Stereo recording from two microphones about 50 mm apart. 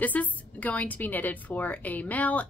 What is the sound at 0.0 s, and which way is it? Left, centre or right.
A woman's voice, left.